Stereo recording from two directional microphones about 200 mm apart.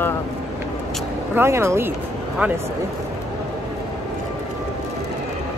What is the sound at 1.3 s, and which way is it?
Speech, 10° right (ahead or behind).